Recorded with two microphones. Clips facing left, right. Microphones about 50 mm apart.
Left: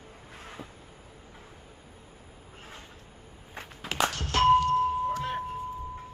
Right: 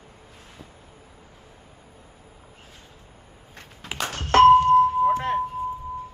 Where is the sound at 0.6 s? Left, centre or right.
Centre.